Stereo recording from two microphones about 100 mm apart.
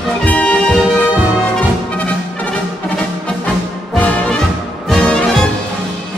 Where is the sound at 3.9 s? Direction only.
15° left (ahead or behind).